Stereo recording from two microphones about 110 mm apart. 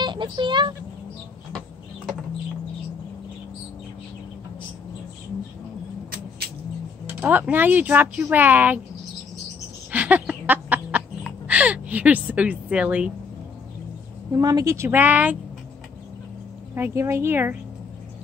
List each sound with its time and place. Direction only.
0.0 s speech: 45° right (ahead or behind)
7.1 s speech: 15° right (ahead or behind)
9.8 s a sound: 15° right (ahead or behind)
11.4 s speech: 10° right (ahead or behind)
14.3 s speech: 30° right (ahead or behind)
14.9 s speech: 15° right (ahead or behind)
16.7 s speech: 20° right (ahead or behind)